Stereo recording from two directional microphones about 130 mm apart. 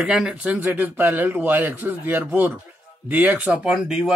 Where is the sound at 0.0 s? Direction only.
5° right (ahead or behind).